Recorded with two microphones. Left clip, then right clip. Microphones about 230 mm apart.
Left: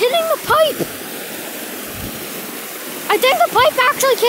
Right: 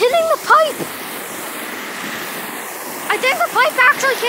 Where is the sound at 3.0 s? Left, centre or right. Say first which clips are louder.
Left 3 dB; left.